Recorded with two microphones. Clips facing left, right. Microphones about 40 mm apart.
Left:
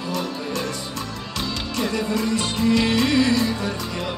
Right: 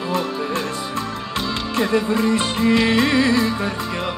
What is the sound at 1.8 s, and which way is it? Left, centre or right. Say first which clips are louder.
Music: right 5 dB; right.